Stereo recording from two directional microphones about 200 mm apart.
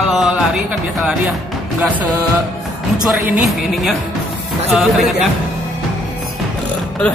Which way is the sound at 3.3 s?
Centre (ahead or behind).